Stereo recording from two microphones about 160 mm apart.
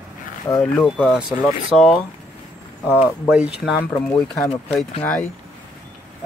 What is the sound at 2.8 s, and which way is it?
Speech, 10° right (ahead or behind).